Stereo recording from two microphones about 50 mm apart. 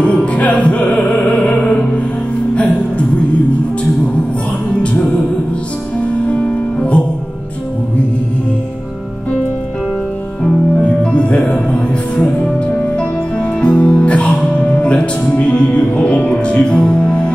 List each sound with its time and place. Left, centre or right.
0.0 s music: left
6.2 s music: left
10.8 s music: left